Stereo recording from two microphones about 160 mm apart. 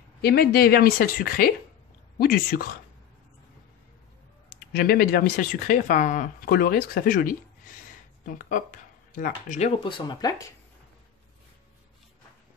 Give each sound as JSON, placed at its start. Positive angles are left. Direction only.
{"t": 0.2, "sound": "a woman's voice", "side_deg": 75}
{"t": 4.7, "sound": "speech", "side_deg": 70}